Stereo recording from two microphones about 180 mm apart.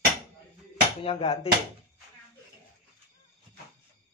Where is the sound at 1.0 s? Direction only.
35° left (ahead or behind).